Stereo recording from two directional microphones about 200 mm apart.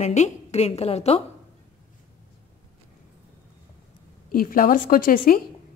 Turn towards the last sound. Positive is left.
turn(degrees=45)  # may be behind; listen again after turning